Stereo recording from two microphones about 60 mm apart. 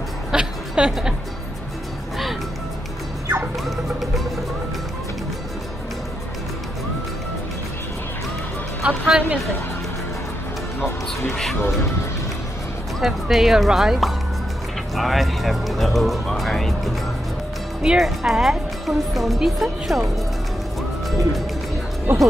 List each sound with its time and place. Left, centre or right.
0.3 s a sound: centre
3.7 s music: centre
8.8 s music: centre
11.5 s speech: left
13.0 s speech: centre
22.1 s speech: right